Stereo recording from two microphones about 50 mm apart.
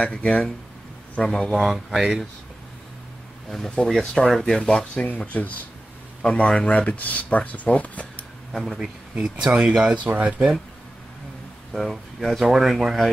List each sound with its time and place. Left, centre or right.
0.0 s speech: left
1.2 s speech: centre
3.4 s speech: centre
3.7 s speech: centre
4.3 s speech: centre
4.6 s speech: centre
4.9 s speech: left
6.2 s speech: centre
9.2 s speech: centre
11.7 s speech: centre